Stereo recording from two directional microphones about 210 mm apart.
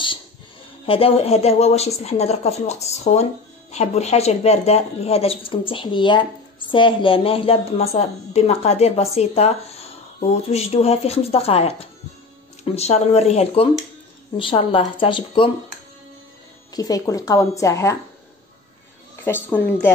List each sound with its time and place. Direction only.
0.8 s a woman's voice: 25° left (ahead or behind)
16.7 s speech: 15° left (ahead or behind)
19.2 s speech: 10° left (ahead or behind)